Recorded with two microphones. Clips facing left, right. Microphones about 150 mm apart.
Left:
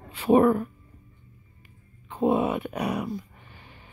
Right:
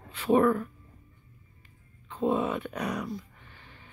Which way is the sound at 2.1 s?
10° left (ahead or behind).